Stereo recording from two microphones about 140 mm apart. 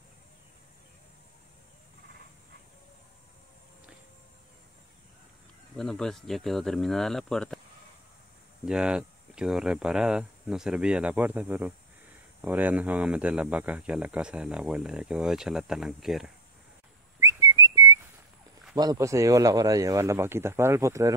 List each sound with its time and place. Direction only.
5.8 s speech: 5° left (ahead or behind)
8.6 s speech: 5° right (ahead or behind)
17.2 s whistling: 25° right (ahead or behind)
18.8 s speech: 25° right (ahead or behind)